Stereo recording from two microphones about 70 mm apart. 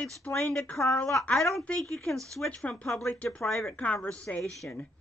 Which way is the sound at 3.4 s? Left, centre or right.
Left.